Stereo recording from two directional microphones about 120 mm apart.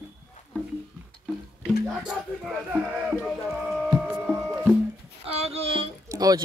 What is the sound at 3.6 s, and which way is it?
Music, 5° right (ahead or behind).